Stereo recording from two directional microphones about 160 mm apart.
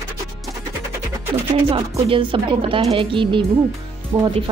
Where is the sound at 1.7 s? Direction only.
35° right (ahead or behind).